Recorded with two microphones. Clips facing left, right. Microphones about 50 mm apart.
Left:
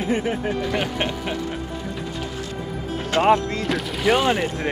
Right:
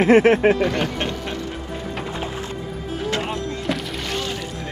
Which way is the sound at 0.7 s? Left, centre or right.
Centre.